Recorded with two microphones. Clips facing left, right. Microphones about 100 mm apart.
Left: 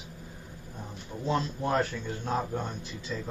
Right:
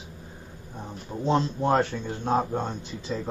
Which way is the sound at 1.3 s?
30° right (ahead or behind).